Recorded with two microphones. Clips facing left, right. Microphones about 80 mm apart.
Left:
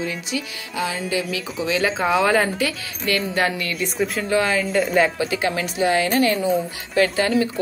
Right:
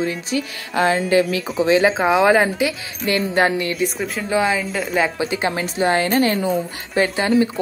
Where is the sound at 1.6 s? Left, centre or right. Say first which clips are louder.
Right 6 dB; right.